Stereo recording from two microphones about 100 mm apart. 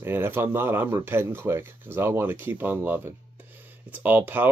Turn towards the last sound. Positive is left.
turn(degrees=-20)  # may be behind; listen again after turning